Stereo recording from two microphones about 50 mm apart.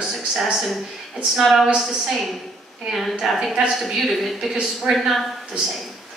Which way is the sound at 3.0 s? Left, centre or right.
Centre.